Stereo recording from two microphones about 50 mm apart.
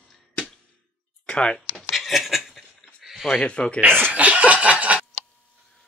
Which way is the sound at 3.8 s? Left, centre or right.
Right.